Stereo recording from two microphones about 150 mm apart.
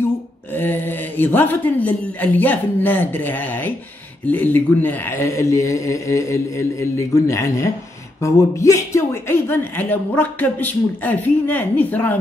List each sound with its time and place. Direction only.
0.6 s speech: 15° left (ahead or behind)